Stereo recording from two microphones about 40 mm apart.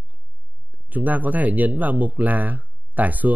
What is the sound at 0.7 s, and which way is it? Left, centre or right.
Speech, right.